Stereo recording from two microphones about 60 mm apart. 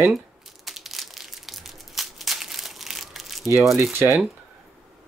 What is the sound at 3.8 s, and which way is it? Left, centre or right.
Speech, right.